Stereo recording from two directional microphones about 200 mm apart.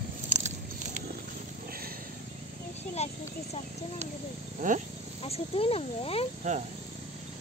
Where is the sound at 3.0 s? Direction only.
30° left (ahead or behind).